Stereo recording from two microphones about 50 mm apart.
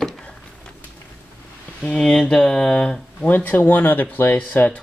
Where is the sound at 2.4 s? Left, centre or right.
Centre.